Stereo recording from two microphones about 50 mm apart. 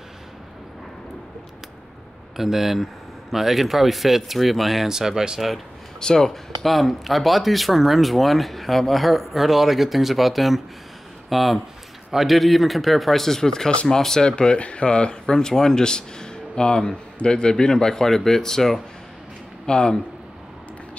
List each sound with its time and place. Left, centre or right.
2.3 s speech: centre
5.9 s speech: centre
6.6 s speech: centre